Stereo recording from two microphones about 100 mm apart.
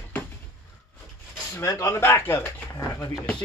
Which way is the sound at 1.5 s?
30° left (ahead or behind).